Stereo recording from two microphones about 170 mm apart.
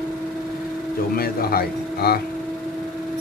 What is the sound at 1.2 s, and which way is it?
Speech, 60° left (ahead or behind).